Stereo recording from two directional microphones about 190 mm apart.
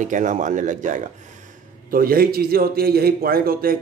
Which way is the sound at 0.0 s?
40° right (ahead or behind).